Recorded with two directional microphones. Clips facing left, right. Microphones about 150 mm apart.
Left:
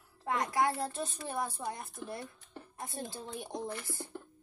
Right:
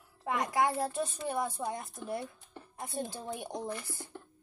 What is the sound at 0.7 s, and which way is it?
A woman's voice, 15° right (ahead or behind).